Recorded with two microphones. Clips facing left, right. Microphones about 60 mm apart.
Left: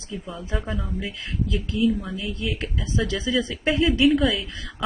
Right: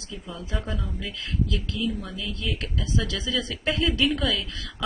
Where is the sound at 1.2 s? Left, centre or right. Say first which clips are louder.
Right 2 dB; left.